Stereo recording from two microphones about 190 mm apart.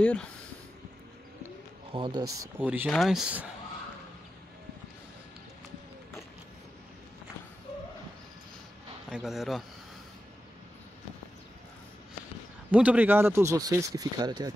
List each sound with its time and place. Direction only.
0.0 s speech: 5° left (ahead or behind)
1.9 s speech: 25° right (ahead or behind)
2.6 s speech: 10° right (ahead or behind)
9.1 s speech: centre (ahead or behind)
12.7 s speech: 10° right (ahead or behind)